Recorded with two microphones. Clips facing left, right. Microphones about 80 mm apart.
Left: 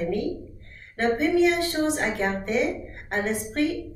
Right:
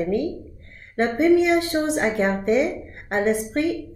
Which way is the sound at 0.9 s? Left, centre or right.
Right.